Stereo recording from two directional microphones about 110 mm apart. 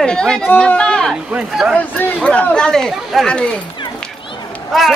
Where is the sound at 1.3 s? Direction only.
5° right (ahead or behind).